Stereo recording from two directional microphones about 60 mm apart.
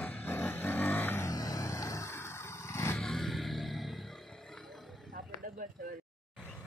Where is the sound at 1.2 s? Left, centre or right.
Left.